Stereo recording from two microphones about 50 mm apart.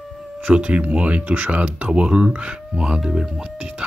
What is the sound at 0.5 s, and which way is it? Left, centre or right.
Speech, right.